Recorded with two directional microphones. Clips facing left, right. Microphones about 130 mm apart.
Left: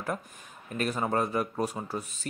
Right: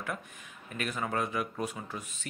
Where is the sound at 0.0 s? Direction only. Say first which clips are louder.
Left 4 dB; 35° left (ahead or behind).